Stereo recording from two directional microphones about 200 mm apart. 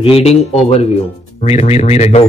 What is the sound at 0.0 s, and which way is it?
Speech, 30° left (ahead or behind).